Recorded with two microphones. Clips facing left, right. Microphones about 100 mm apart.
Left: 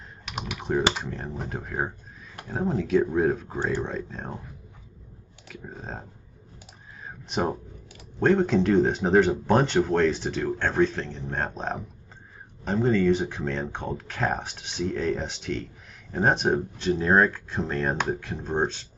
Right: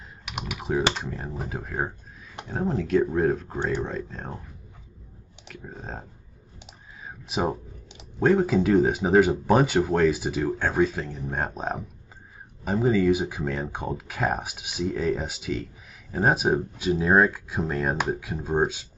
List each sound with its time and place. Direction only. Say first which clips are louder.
0.5 s speech: even; 5° right (ahead or behind)
5.5 s speech: even; centre (ahead or behind)
7.1 s a sound: even; 5° right (ahead or behind)
8.2 s speech: even; 5° right (ahead or behind)